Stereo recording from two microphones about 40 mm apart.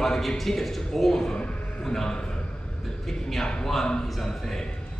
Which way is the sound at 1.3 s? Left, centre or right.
Centre.